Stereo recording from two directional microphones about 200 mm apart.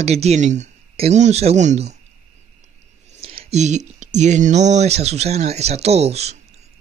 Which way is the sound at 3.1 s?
30° right (ahead or behind).